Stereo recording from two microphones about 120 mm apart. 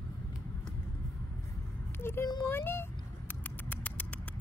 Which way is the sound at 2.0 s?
20° left (ahead or behind).